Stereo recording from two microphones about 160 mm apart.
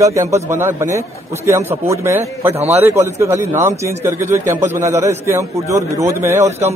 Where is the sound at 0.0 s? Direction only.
20° right (ahead or behind).